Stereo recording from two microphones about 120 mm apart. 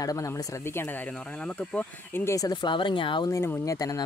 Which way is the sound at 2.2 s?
30° left (ahead or behind).